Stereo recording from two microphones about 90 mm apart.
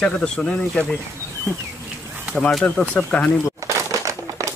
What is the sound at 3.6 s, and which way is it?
Crushing, 35° right (ahead or behind).